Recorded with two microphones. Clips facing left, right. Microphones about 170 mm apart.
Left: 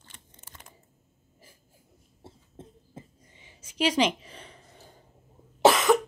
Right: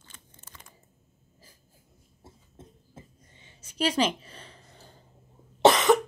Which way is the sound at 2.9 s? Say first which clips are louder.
Left 3 dB; 15° left (ahead or behind).